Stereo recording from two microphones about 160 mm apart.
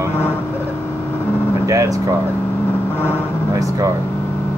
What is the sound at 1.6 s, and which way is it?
Speech, 20° right (ahead or behind).